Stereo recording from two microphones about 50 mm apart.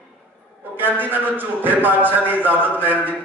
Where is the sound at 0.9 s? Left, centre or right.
Right.